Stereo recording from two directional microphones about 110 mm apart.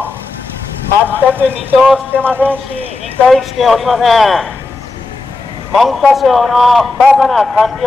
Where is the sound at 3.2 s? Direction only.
Centre (ahead or behind).